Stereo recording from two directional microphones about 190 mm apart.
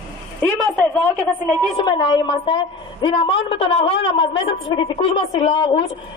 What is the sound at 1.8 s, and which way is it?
A woman's voice, 25° left (ahead or behind).